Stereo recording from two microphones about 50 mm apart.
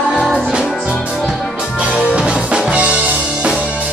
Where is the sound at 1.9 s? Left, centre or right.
Right.